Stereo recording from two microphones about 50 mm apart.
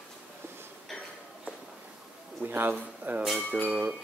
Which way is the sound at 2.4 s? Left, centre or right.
Right.